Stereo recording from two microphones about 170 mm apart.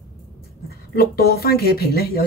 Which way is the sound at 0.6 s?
65° left (ahead or behind).